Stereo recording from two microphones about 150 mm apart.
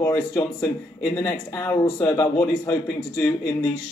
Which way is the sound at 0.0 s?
25° left (ahead or behind).